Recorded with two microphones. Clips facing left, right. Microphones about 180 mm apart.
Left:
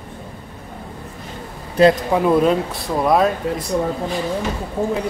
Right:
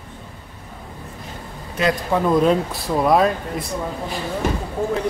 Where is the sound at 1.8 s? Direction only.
35° left (ahead or behind).